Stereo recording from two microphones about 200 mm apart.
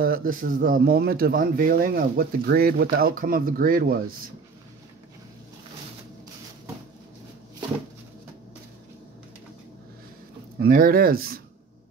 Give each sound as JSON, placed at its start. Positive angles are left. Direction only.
{"t": 0.0, "sound": "a man's voice", "side_deg": -45}
{"t": 10.6, "sound": "a man's voice", "side_deg": -45}